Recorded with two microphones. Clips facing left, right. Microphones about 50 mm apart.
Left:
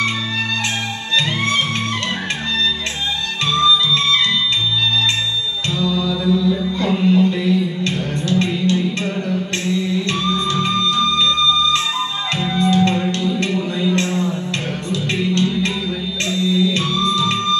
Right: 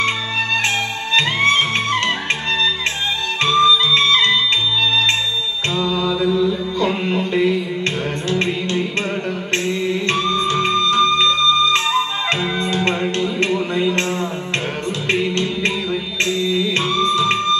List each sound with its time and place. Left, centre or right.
1.1 s music: right
3.4 s music: right
5.8 s mantra: right
9.7 s music: right
12.4 s music: right